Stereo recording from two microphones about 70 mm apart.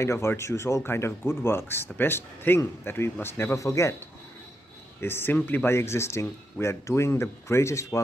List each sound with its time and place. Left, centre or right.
0.0 s speech: left
3.5 s speech: left
5.0 s speech: left